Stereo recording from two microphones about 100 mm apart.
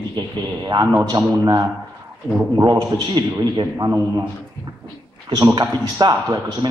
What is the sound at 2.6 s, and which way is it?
A man's voice, 35° right (ahead or behind).